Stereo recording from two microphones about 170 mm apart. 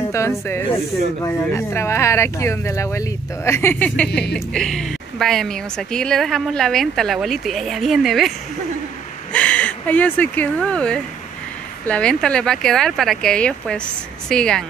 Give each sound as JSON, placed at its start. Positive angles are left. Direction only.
{"t": 1.2, "sound": "a woman's voice", "side_deg": 15}
{"t": 9.3, "sound": "a woman's voice", "side_deg": 10}